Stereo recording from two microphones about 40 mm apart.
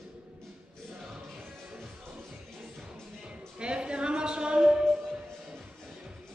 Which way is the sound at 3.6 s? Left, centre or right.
Right.